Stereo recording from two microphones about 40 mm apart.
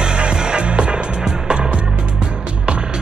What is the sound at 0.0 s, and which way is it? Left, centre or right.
Music, right.